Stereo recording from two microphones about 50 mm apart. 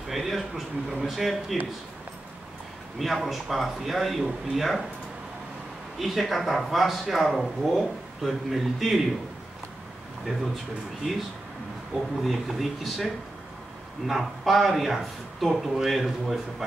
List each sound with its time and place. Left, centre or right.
0.1 s speech: centre
3.0 s speech: centre
5.9 s speech: centre
10.2 s speech: centre
12.2 s speech: centre